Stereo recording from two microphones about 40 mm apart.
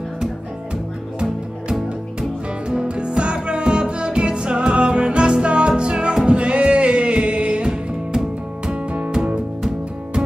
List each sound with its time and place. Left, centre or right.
2.7 s music: right